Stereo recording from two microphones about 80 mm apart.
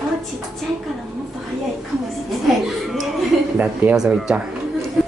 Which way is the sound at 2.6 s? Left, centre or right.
Centre.